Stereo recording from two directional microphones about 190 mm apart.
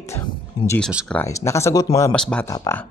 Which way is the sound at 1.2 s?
15° left (ahead or behind).